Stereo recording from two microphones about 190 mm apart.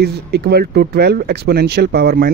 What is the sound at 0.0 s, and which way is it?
Speech, 60° right (ahead or behind).